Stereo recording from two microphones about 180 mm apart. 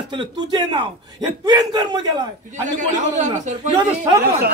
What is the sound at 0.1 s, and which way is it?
A man's voice, 25° right (ahead or behind).